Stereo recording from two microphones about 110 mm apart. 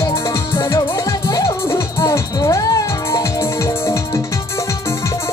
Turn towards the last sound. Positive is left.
turn(degrees=25)  # may be behind; listen again after turning